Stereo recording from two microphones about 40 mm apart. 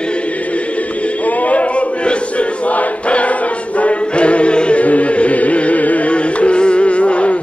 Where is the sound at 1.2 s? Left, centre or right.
Left.